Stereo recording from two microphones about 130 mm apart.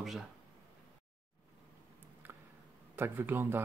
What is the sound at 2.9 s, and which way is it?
Speech, 15° right (ahead or behind).